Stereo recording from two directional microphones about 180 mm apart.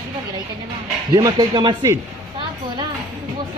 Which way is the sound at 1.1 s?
20° right (ahead or behind).